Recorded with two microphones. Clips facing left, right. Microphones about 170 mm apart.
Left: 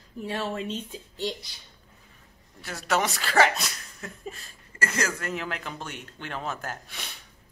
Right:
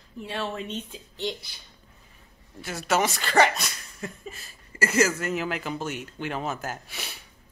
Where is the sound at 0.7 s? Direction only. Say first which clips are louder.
Left 1 dB; 35° left (ahead or behind).